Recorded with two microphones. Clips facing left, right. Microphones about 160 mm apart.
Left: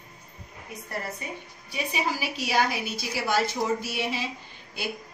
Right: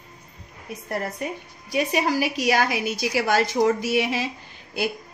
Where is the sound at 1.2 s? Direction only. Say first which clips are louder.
Right 7 dB; 75° right (ahead or behind).